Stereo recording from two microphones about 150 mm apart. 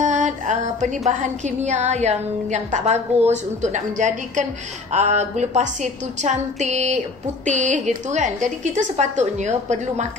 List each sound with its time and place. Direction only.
0.0 s music: 55° right (ahead or behind)